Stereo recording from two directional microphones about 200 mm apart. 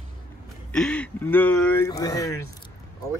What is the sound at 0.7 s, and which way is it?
Speech, 5° left (ahead or behind).